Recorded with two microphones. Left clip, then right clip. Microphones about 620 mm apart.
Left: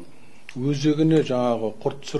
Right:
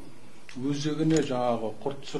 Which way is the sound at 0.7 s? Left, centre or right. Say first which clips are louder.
Left 7 dB; left.